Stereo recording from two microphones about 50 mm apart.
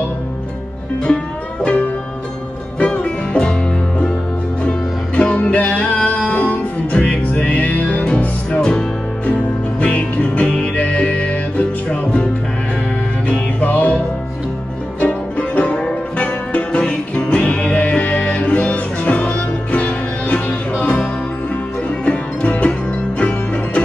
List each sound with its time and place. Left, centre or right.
1.0 s music: left
4.6 s music: left
8.0 s music: left
9.2 s music: left
13.3 s music: left